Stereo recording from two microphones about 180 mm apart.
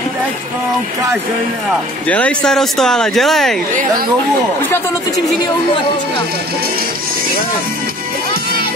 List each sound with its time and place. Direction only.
2.0 s speech: 5° left (ahead or behind)